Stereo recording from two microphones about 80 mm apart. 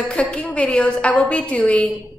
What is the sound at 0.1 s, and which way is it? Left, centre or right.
A woman's voice, centre.